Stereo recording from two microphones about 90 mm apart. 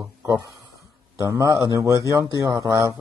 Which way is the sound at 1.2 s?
35° right (ahead or behind).